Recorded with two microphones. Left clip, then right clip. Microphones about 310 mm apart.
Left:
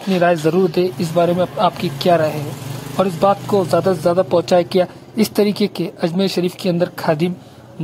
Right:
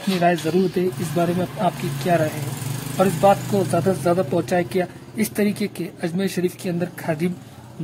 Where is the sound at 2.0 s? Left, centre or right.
Centre.